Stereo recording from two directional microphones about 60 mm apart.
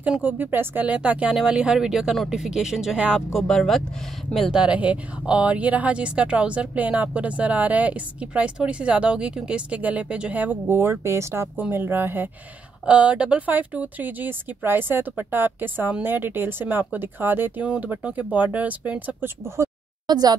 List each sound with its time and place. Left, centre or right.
0.2 s speech: right; by 3.0 s centre
3.3 s speech: centre
4.5 s speech: centre
10.7 s speech: right
11.7 s speech: right
12.8 s speech: right
17.6 s speech: right
19.2 s speech: right